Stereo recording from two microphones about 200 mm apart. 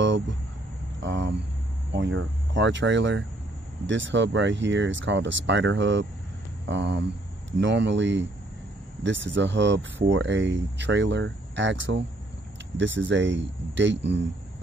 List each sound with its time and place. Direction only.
0.0 s vehicle: 65° right (ahead or behind)
1.0 s speech: 65° right (ahead or behind)